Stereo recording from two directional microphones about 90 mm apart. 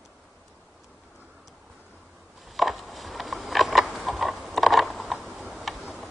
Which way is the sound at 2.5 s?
Centre (ahead or behind).